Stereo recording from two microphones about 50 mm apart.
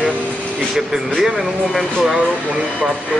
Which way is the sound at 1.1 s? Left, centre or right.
Centre.